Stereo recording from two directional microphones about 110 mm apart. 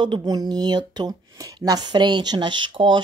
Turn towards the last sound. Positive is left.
turn(degrees=-45)  # may be behind; listen again after turning